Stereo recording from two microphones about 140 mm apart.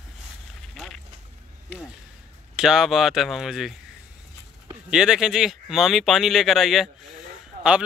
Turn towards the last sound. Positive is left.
turn(degrees=-70)  # may be behind; listen again after turning